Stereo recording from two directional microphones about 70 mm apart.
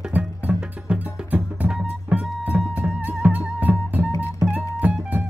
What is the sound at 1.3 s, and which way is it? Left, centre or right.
Music, right.